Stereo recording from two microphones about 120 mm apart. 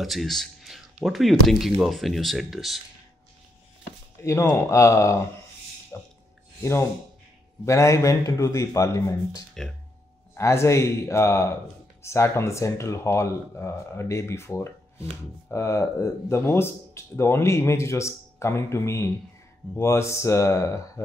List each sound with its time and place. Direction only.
0.0 s speech: centre (ahead or behind)
4.2 s speech: 25° left (ahead or behind)
5.9 s speech: 15° left (ahead or behind)